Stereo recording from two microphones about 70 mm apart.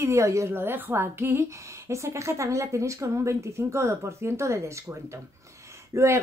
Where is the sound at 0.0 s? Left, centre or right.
Right.